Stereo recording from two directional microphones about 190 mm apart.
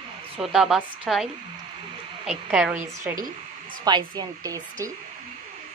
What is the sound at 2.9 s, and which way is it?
A woman's voice, 15° right (ahead or behind).